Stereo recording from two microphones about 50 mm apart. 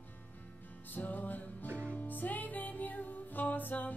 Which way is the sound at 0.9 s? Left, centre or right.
Left.